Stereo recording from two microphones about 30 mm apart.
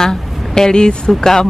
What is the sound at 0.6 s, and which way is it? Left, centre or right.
Speech, left.